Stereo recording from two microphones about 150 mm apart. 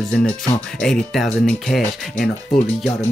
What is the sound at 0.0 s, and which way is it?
Speech, 5° left (ahead or behind).